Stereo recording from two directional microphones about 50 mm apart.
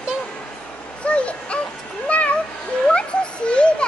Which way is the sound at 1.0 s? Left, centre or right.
Left.